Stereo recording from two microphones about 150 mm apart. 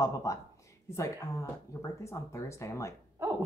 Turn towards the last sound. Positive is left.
turn(degrees=-20)  # may be behind; listen again after turning